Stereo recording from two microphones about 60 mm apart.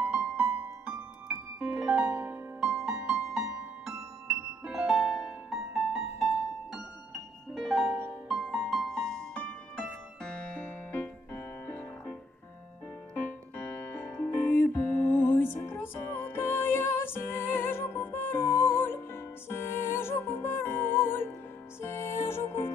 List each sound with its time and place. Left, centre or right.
0.1 s music: right
1.6 s piano: centre
2.6 s music: centre
11.3 s music: left
13.1 s keyboard: left
14.1 s music: left